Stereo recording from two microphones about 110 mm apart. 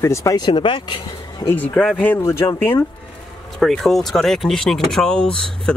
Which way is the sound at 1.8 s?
5° left (ahead or behind).